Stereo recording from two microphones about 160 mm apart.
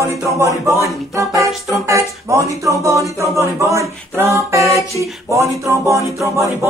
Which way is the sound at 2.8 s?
20° right (ahead or behind).